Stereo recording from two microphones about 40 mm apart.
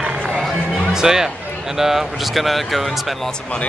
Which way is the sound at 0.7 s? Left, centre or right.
Centre.